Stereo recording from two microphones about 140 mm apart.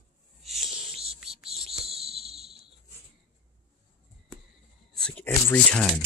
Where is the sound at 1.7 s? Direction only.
Centre (ahead or behind).